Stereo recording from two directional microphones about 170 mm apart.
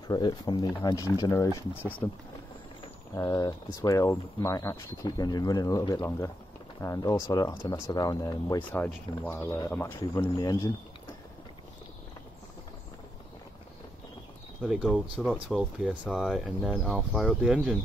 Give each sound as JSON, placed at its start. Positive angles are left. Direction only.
{"t": 0.1, "sound": "speech", "side_deg": 25}
{"t": 3.2, "sound": "speech", "side_deg": 20}
{"t": 8.8, "sound": "speech", "side_deg": 10}
{"t": 14.6, "sound": "speech", "side_deg": -5}